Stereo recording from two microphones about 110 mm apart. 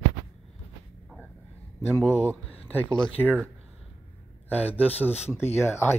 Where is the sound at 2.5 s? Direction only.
15° left (ahead or behind).